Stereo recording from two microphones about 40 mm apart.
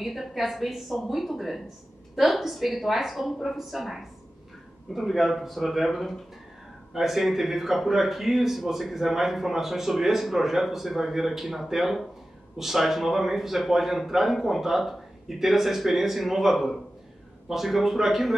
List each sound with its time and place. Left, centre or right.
0.0 s speech: centre